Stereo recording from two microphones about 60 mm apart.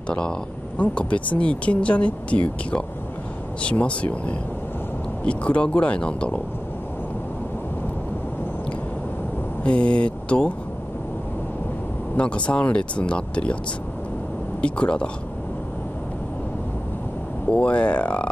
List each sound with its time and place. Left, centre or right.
0.1 s speech: centre
9.6 s speech: centre
12.2 s speech: centre
14.6 s speech: centre
17.5 s speech: left